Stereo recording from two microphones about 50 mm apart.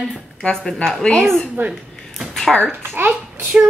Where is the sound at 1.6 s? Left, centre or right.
Right.